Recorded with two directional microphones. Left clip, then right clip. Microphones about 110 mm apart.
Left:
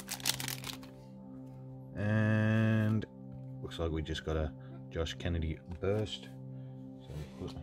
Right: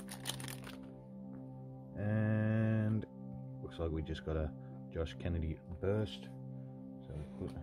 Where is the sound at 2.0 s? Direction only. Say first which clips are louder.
Left 5 dB; 15° left (ahead or behind).